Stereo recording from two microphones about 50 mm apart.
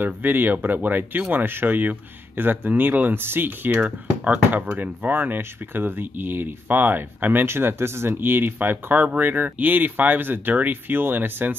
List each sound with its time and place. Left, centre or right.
0.0 s speech: right
1.3 s speech: right
4.2 s speech: right